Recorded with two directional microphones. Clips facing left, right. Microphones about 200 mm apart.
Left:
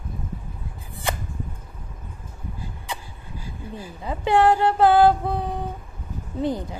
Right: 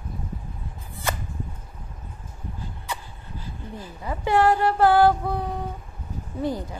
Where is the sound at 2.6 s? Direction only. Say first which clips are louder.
Even; 10° left (ahead or behind).